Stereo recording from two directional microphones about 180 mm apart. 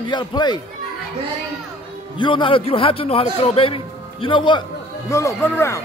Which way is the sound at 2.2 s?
25° left (ahead or behind).